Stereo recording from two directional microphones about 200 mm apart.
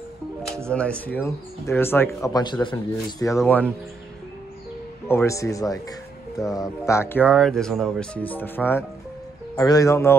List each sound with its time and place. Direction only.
0.7 s speech: 5° left (ahead or behind)
5.0 s speech: 15° left (ahead or behind)